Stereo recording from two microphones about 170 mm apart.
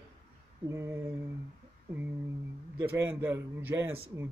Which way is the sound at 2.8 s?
15° right (ahead or behind).